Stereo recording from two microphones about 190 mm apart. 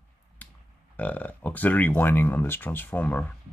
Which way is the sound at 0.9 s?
10° left (ahead or behind).